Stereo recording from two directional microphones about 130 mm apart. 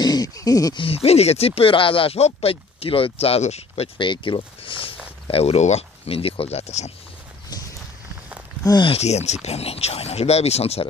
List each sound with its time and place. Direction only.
0.0 s a sound: 30° left (ahead or behind)
0.7 s speech: 50° left (ahead or behind)
4.1 s speech: 40° left (ahead or behind); by 6.9 s 55° left (ahead or behind)
8.6 s speech: 35° left (ahead or behind)
8.9 s speech: 55° left (ahead or behind)